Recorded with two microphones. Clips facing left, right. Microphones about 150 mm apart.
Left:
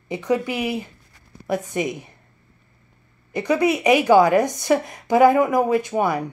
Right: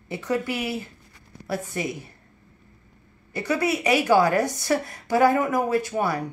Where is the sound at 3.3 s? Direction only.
15° left (ahead or behind).